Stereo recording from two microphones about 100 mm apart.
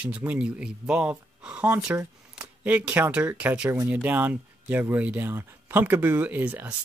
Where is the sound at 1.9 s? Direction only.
25° right (ahead or behind).